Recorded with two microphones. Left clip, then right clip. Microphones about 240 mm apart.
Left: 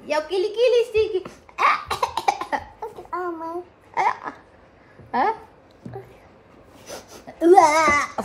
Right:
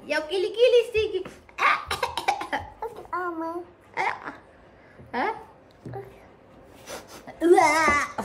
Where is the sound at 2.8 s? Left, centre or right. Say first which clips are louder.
Left 1 dB; centre.